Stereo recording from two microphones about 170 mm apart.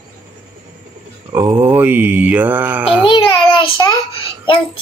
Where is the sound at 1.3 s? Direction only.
20° right (ahead or behind).